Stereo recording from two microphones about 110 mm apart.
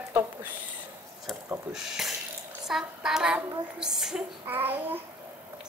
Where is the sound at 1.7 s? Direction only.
5° right (ahead or behind).